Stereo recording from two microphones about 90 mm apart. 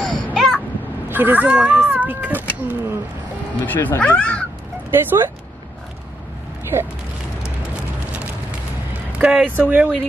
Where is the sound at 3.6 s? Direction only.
20° left (ahead or behind).